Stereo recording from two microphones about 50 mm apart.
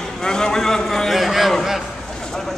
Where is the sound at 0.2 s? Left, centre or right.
Centre.